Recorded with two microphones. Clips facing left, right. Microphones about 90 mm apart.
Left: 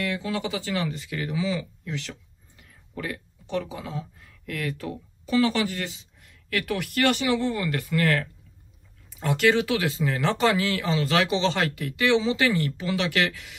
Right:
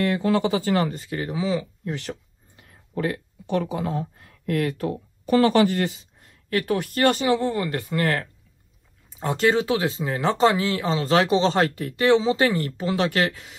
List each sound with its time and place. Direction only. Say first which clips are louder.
0.0 s speech: right 7 dB; 45° right (ahead or behind)
6.5 s speech: right 4 dB; 35° right (ahead or behind)